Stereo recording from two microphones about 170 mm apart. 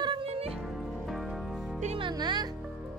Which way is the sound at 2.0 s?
25° right (ahead or behind).